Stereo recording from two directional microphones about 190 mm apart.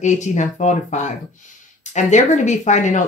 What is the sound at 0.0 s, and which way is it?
A woman's voice, 40° left (ahead or behind).